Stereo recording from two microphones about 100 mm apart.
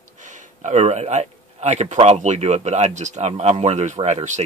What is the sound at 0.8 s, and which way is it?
Speech, 90° right.